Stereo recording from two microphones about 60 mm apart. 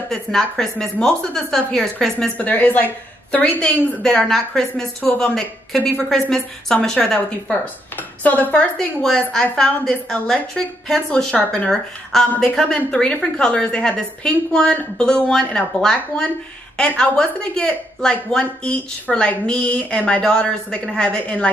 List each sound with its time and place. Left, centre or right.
0.1 s a woman's voice: centre
2.1 s a woman's voice: left
8.2 s a woman's voice: left
8.7 s a woman's voice: centre